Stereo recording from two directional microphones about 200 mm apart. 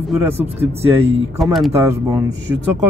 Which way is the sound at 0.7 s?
30° right (ahead or behind).